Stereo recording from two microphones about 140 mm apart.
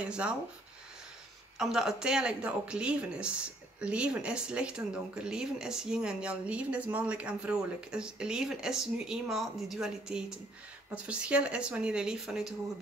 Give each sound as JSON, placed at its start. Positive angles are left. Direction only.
{"t": 0.0, "sound": "speech", "side_deg": -5}
{"t": 1.6, "sound": "speech", "side_deg": -5}